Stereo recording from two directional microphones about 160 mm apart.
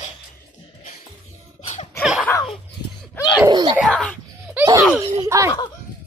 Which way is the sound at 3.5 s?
25° right (ahead or behind).